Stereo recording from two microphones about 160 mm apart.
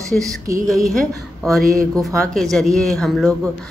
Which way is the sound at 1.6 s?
60° right (ahead or behind).